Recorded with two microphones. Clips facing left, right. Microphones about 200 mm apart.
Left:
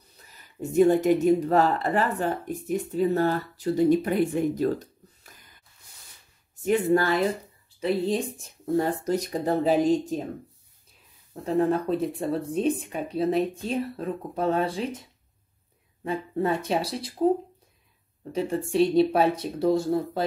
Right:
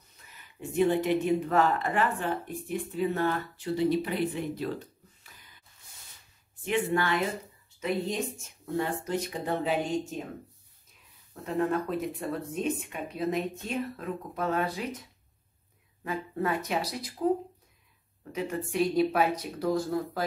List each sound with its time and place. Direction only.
0.3 s speech: 40° left (ahead or behind)
6.6 s speech: 40° left (ahead or behind)
11.4 s speech: 35° left (ahead or behind)
18.3 s speech: 30° left (ahead or behind)